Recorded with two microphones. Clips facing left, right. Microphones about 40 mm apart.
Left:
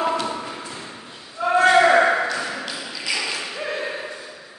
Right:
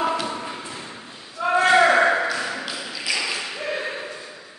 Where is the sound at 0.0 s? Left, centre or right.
Centre.